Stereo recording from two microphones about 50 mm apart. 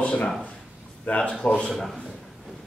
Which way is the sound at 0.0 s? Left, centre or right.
Left.